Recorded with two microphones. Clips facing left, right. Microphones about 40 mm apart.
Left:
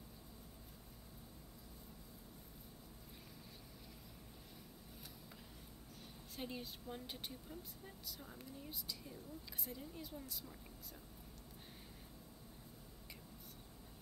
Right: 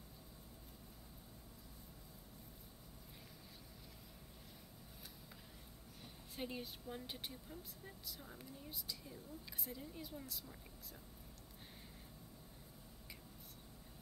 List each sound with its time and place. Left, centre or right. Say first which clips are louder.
6.3 s speech: right 1 dB; centre